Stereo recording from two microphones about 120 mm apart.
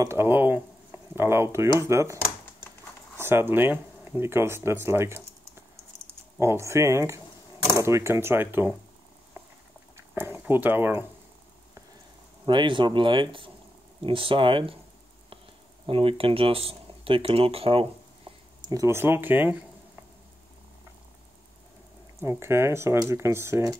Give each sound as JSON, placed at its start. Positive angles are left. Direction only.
{"t": 0.0, "sound": "speech", "side_deg": -20}
{"t": 3.2, "sound": "speech", "side_deg": -20}
{"t": 6.4, "sound": "speech", "side_deg": -25}
{"t": 9.4, "sound": "patter", "side_deg": -20}
{"t": 9.9, "sound": "a sound", "side_deg": -20}
{"t": 12.4, "sound": "speech", "side_deg": -40}
{"t": 15.9, "sound": "speech", "side_deg": -50}
{"t": 18.7, "sound": "speech", "side_deg": -25}
{"t": 22.2, "sound": "speech", "side_deg": -20}